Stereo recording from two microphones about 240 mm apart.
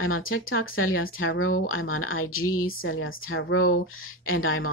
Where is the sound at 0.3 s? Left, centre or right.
Left.